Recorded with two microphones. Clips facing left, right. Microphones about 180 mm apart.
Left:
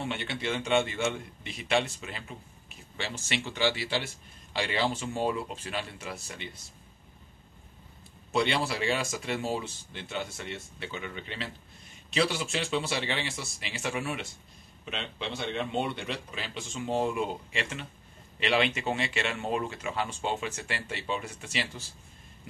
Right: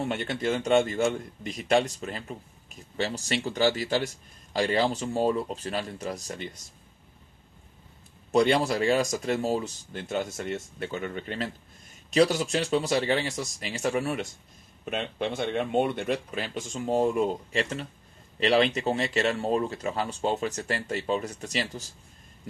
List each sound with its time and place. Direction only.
0.0 s a man's voice: 45° right (ahead or behind)
8.3 s a man's voice: 45° right (ahead or behind)